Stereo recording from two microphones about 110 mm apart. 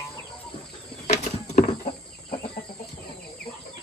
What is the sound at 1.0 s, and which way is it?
Horse, 85° left.